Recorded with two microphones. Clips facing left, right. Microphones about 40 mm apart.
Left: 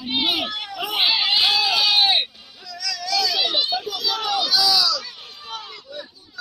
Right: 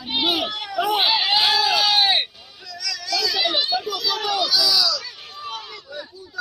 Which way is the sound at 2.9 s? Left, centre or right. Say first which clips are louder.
Left 2 dB; centre.